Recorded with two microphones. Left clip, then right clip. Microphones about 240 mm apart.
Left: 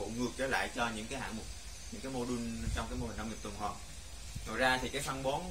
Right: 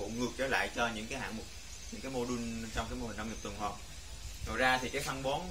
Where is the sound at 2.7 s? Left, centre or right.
Centre.